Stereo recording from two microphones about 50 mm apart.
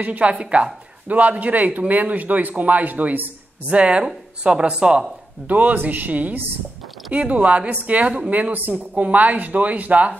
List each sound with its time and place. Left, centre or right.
0.0 s a man's voice: right
5.5 s a man's voice: right